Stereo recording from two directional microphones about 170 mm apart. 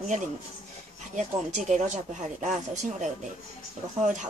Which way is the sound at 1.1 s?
45° right (ahead or behind).